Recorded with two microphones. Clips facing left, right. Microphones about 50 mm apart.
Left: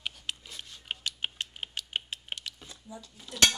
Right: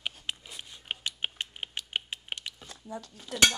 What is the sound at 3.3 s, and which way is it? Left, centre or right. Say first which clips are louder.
Speech: right 1 dB; right.